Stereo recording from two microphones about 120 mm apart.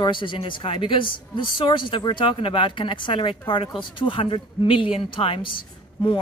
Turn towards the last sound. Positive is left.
turn(degrees=45)  # may be behind; listen again after turning